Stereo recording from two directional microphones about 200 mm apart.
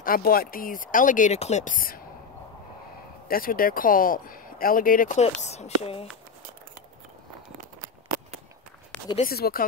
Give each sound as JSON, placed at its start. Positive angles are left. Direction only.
{"t": 0.0, "sound": "speech", "side_deg": 45}
{"t": 3.3, "sound": "a woman's voice", "side_deg": 45}
{"t": 7.5, "sound": "a sound", "side_deg": -45}
{"t": 9.2, "sound": "speech", "side_deg": 50}